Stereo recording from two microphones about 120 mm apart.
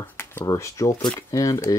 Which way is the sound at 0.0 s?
20° left (ahead or behind).